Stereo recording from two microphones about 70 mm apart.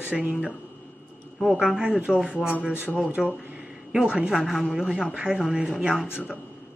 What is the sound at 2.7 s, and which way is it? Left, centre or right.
Speech, left.